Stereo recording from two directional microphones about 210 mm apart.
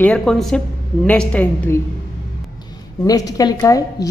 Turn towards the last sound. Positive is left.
turn(degrees=15)  # may be behind; listen again after turning